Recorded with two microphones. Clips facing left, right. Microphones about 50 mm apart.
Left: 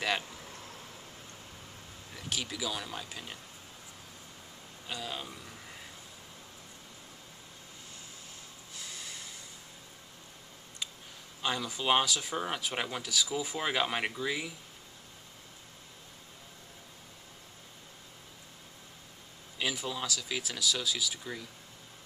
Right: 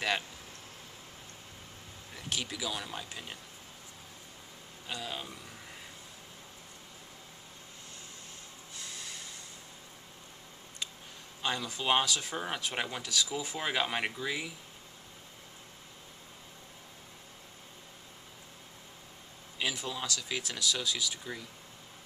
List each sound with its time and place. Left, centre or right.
2.1 s speech: centre
4.8 s speech: centre
8.7 s snort: centre
11.4 s speech: centre
19.6 s speech: centre